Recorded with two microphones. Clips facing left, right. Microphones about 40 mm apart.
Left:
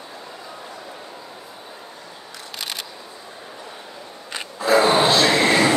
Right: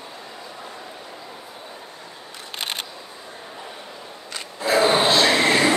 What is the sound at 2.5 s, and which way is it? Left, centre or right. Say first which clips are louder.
Single-lens reflex camera: right 2 dB; right.